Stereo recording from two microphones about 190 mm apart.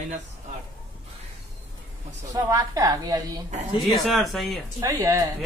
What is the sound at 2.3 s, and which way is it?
Speech, 20° right (ahead or behind).